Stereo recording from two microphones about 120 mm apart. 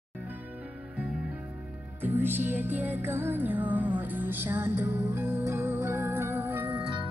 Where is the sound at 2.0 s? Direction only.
15° right (ahead or behind).